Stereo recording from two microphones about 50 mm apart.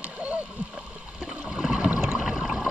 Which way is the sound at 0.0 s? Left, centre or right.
Right.